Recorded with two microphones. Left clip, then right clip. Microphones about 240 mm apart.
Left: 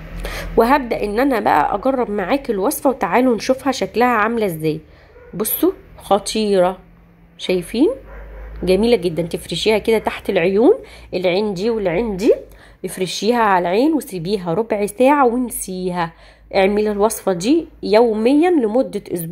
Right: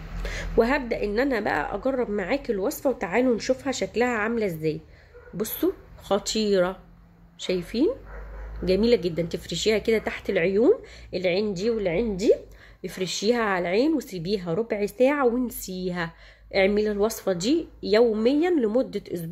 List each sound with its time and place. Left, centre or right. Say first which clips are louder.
0.2 s a woman's voice: left 7 dB; centre